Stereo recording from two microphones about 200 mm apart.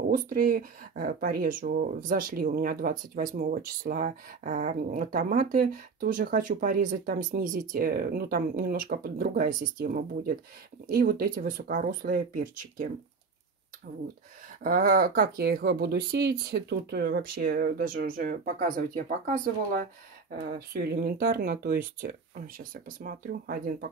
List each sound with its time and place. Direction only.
0.1 s speech: 45° right (ahead or behind)